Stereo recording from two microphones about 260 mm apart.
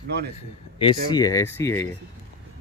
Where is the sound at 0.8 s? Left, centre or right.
Centre.